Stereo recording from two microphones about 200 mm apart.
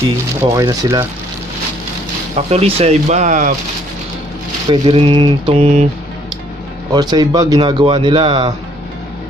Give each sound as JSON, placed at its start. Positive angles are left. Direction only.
{"t": 0.4, "sound": "speech", "side_deg": -15}
{"t": 2.3, "sound": "speech", "side_deg": -30}
{"t": 4.6, "sound": "speech", "side_deg": -25}
{"t": 6.9, "sound": "speech", "side_deg": -20}